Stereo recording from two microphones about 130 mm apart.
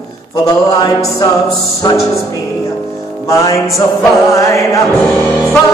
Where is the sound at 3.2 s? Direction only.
25° left (ahead or behind).